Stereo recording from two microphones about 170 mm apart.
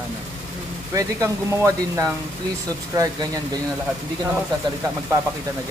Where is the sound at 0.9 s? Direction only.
15° right (ahead or behind).